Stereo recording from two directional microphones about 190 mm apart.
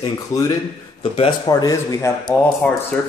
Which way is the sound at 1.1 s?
30° left (ahead or behind).